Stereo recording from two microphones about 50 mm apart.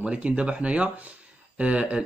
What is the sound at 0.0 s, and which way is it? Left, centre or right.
Speech, right.